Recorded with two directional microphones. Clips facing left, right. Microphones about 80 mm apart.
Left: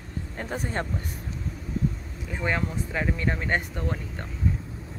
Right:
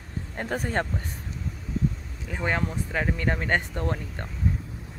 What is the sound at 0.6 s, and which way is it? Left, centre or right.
Speech, right.